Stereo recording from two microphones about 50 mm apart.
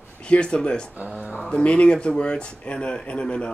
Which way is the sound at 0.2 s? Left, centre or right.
Centre.